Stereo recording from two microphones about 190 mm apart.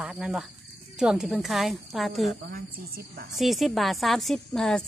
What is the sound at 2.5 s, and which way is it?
Speech, 50° right (ahead or behind).